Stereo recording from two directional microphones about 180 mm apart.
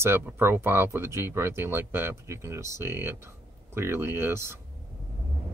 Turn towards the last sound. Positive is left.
turn(degrees=-15)  # may be behind; listen again after turning